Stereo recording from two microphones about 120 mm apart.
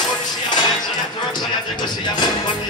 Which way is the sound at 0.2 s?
35° left (ahead or behind).